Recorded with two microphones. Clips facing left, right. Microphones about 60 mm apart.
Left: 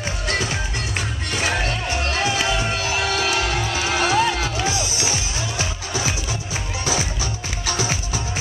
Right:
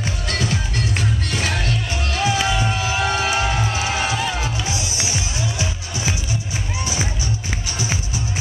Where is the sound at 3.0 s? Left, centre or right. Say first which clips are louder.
Right 3 dB; centre.